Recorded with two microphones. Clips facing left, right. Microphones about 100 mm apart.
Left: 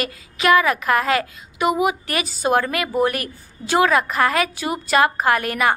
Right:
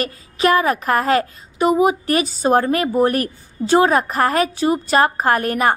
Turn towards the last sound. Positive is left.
turn(degrees=-40)  # may be behind; listen again after turning